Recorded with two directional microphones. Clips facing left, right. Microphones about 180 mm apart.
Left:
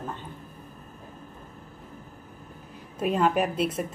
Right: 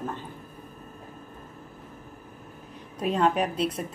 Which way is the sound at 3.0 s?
5° left (ahead or behind).